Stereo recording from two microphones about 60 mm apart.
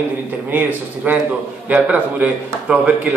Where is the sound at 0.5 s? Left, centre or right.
Right.